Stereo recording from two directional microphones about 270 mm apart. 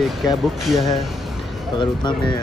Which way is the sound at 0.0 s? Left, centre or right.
Centre.